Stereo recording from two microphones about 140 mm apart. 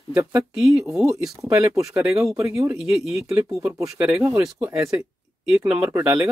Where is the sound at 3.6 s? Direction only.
20° right (ahead or behind).